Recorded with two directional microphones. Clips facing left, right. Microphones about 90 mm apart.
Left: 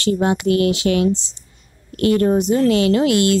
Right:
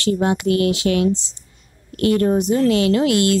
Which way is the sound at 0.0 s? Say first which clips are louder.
Left 1 dB; 25° left (ahead or behind).